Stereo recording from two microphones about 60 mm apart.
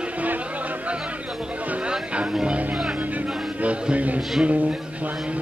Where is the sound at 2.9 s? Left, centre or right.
Right.